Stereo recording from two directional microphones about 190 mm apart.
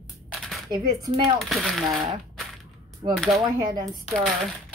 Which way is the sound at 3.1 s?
Centre (ahead or behind).